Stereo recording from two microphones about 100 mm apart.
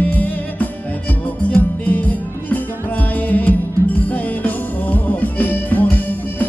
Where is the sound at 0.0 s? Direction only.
15° left (ahead or behind).